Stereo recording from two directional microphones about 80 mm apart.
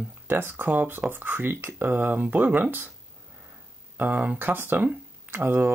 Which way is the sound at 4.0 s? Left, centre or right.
Centre.